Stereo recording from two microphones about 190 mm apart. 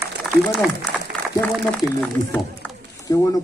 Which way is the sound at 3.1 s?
15° left (ahead or behind).